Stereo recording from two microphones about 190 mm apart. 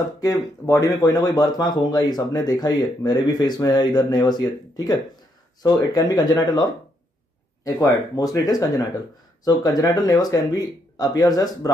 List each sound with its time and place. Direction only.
0.7 s speech: 15° left (ahead or behind)